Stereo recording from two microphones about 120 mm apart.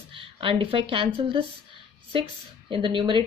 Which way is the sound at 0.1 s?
50° right (ahead or behind).